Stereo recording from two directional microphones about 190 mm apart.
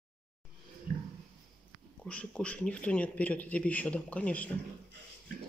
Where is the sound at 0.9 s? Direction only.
50° right (ahead or behind).